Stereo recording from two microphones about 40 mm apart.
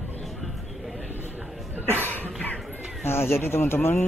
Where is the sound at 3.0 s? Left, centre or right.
Left.